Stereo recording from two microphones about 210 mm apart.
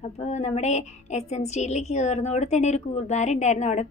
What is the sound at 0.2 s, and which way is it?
A woman's voice, 30° left (ahead or behind).